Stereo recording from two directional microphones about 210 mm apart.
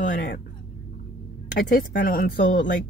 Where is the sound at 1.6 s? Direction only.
45° left (ahead or behind).